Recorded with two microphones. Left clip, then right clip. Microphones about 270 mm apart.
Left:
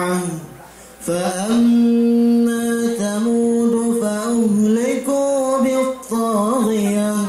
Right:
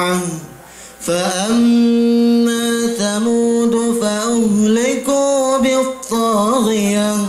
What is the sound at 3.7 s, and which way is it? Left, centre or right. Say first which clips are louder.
Music: right 2 dB; centre.